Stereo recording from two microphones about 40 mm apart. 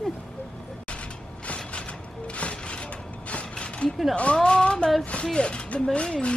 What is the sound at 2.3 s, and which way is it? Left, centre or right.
Mechanisms, left.